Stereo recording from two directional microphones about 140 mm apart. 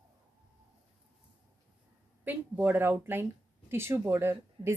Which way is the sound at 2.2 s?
15° right (ahead or behind).